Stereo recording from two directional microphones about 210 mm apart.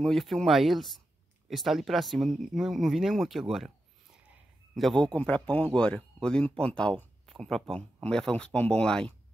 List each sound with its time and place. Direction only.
0.0 s speech: centre (ahead or behind)